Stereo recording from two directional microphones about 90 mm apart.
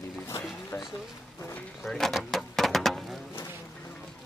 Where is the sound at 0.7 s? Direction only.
25° left (ahead or behind).